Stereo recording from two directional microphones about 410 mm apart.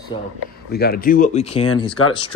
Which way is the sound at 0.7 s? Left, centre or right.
Left.